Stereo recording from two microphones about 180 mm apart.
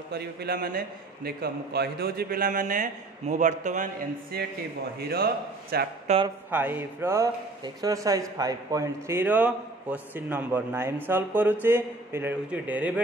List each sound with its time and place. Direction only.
0.1 s a man's voice: 60° right (ahead or behind); by 3.8 s 45° right (ahead or behind)
4.9 s a man's voice: 60° right (ahead or behind)
6.1 s speech: 40° right (ahead or behind)
6.5 s speech: 10° right (ahead or behind)